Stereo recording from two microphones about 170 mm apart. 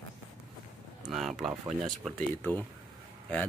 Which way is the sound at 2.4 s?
10° left (ahead or behind).